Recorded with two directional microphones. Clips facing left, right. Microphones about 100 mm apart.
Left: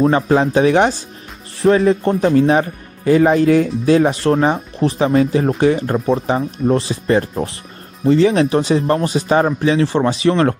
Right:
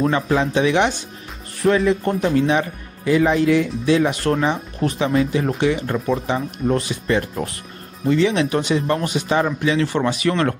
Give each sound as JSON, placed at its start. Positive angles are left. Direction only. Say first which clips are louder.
{"t": 0.1, "sound": "speech", "louder": "left 5 dB", "side_deg": 35}